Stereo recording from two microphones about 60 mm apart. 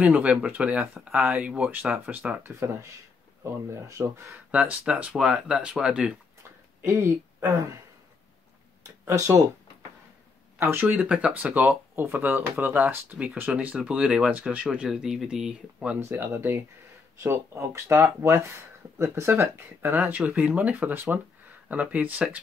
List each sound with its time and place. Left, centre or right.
0.0 s speech: right
2.4 s speech: right
3.9 s speech: right
4.5 s speech: centre
7.0 s speech: right
8.8 s speech: right
10.6 s speech: right
10.9 s speech: right
11.5 s speech: right
13.6 s speech: right
16.0 s speech: right
20.0 s speech: right